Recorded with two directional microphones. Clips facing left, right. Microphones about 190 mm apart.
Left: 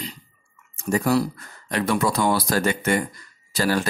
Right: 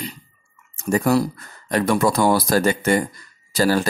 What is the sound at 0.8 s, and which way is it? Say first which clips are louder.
Speech: right 3 dB; 45° right (ahead or behind).